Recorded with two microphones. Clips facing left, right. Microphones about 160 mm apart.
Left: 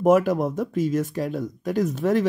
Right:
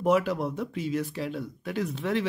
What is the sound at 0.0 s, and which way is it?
Speech, 45° left (ahead or behind).